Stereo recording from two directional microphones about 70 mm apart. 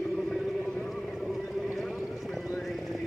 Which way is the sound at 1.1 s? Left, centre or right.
Centre.